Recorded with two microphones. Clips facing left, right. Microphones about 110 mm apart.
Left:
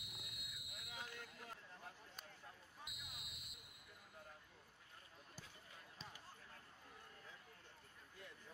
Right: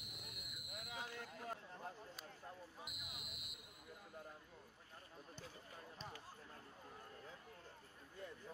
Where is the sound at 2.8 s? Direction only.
5° right (ahead or behind).